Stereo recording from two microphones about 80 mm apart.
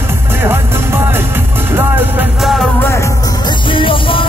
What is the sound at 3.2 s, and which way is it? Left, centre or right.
Music, left.